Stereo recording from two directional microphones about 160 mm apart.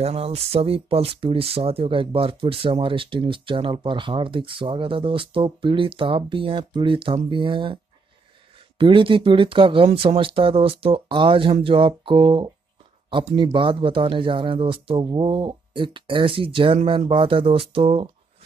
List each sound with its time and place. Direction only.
0.0 s speech: 40° right (ahead or behind)